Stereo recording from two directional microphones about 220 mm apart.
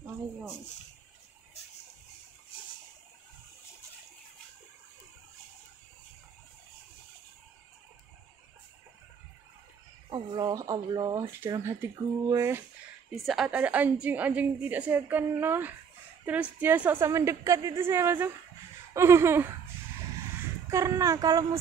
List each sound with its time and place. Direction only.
10.0 s speech: 20° right (ahead or behind)
13.1 s speech: centre (ahead or behind)
20.7 s speech: 15° right (ahead or behind)